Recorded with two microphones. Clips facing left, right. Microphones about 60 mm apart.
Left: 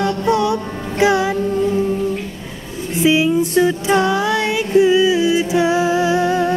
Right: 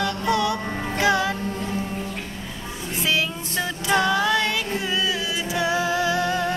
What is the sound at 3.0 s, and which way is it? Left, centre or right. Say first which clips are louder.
Music: left 11 dB; centre.